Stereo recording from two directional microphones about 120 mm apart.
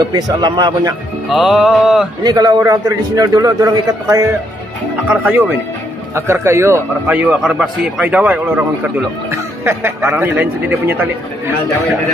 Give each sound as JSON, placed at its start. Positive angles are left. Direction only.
{"t": 0.0, "sound": "a man's voice", "side_deg": -35}
{"t": 1.3, "sound": "music", "side_deg": -5}
{"t": 2.2, "sound": "a man's voice", "side_deg": -30}
{"t": 5.0, "sound": "speech", "side_deg": -10}
{"t": 6.1, "sound": "a man's voice", "side_deg": -20}
{"t": 7.4, "sound": "speech", "side_deg": -5}